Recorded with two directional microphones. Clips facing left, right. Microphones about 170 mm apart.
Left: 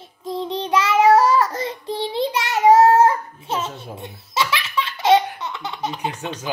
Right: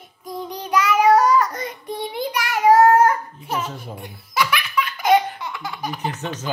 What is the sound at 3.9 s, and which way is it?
Baby laughter, 25° left (ahead or behind).